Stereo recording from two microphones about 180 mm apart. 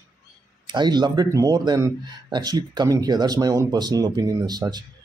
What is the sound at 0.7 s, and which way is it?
Speech, 25° right (ahead or behind).